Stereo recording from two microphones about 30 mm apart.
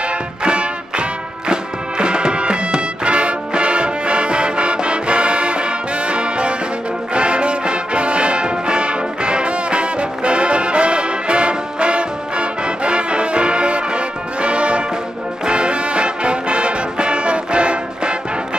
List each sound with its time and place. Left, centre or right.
0.4 s music: right